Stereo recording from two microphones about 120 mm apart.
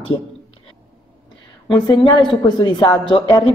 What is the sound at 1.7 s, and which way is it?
A woman's voice, 40° left (ahead or behind).